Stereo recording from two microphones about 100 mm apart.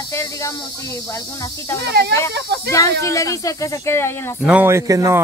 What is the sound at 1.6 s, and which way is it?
Speech, 25° left (ahead or behind).